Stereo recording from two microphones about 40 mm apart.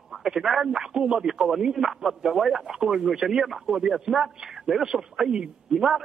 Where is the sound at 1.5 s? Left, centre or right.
Centre.